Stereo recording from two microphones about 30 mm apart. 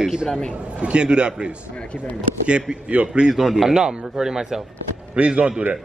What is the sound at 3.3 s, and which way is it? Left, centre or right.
A man's voice, centre.